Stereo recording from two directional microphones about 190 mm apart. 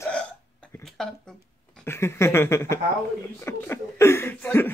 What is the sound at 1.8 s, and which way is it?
Speech, 15° left (ahead or behind).